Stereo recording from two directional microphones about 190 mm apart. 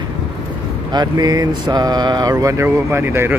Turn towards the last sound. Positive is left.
turn(degrees=-10)  # may be behind; listen again after turning